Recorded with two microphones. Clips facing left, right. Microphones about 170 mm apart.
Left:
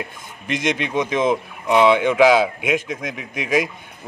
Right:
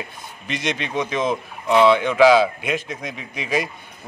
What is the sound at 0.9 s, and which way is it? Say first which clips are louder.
A man's voice: left 3 dB; 15° left (ahead or behind).